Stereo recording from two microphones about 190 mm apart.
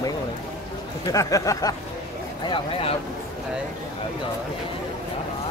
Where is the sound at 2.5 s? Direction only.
30° left (ahead or behind).